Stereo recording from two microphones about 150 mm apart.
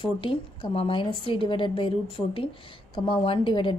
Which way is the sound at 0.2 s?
40° left (ahead or behind).